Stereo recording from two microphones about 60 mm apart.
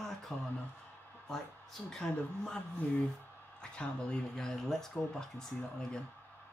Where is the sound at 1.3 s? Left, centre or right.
Centre.